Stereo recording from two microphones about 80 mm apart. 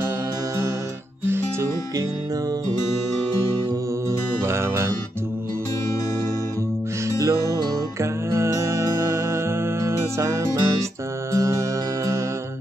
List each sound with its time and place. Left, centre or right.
4.5 s guitar: right
7.1 s music: right